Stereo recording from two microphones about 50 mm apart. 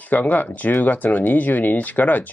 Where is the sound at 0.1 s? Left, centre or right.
Left.